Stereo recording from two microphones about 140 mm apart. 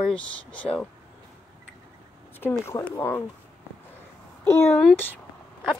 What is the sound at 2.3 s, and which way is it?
Speech, 15° left (ahead or behind).